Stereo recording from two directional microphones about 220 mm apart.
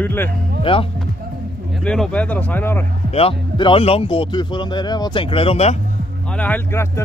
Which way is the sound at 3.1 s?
25° left (ahead or behind).